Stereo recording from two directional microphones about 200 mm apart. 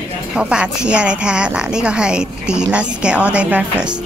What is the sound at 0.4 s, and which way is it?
A woman's voice, 5° right (ahead or behind).